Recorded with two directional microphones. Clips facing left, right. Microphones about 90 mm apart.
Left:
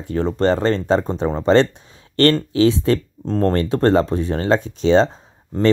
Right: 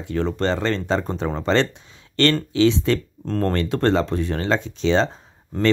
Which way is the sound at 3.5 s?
30° left (ahead or behind).